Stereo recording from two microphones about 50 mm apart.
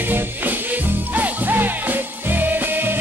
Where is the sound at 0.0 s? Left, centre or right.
Right.